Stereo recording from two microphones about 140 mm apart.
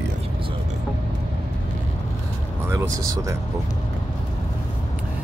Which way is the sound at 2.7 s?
25° right (ahead or behind).